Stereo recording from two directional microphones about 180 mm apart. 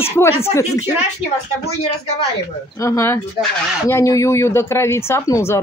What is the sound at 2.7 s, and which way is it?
Speech, 15° left (ahead or behind).